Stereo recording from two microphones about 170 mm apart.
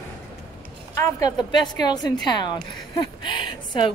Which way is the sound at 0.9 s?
25° left (ahead or behind).